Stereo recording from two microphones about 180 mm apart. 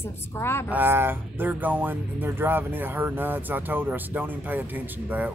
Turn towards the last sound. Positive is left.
turn(degrees=-10)  # may be behind; listen again after turning